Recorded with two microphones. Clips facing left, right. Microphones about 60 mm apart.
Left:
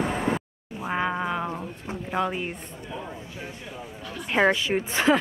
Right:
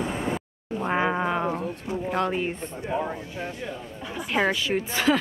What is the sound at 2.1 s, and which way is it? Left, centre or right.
Speech, centre.